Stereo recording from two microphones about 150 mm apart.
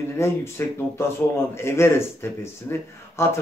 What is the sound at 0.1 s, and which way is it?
Speech, 15° left (ahead or behind).